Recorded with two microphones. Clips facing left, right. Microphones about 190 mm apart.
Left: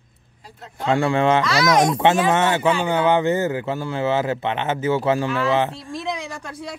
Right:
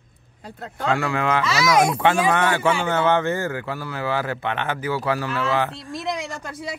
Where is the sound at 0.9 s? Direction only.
30° left (ahead or behind).